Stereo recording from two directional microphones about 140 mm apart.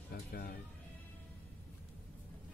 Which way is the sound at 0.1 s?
90° left.